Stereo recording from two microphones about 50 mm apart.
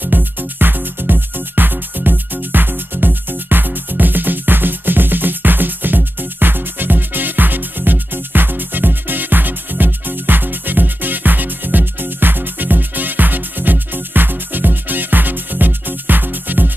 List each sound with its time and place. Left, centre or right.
0.1 s music: right